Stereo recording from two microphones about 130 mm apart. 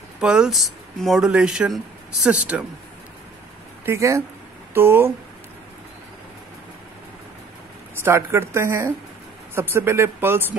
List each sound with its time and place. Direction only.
0.2 s speech: 5° right (ahead or behind)
3.8 s a woman's voice: 20° right (ahead or behind)
8.0 s a woman's voice: 20° right (ahead or behind)